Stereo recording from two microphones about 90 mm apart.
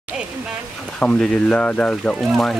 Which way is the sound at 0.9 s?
10° left (ahead or behind).